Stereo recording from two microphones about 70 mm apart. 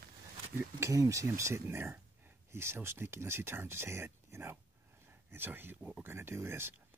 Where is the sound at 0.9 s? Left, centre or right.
Right.